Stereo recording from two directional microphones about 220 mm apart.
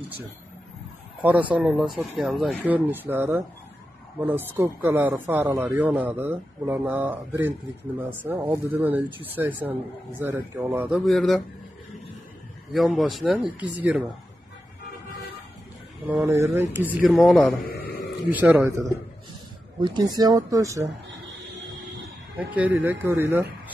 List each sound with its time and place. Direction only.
1.2 s speech: 5° right (ahead or behind)
4.6 s speech: 10° right (ahead or behind)
12.7 s speech: centre (ahead or behind)
16.1 s speech: 10° right (ahead or behind)
17.1 s speech: centre (ahead or behind)
17.7 s a sound: 45° left (ahead or behind)
18.3 s speech: 10° right (ahead or behind)
22.5 s speech: 5° right (ahead or behind)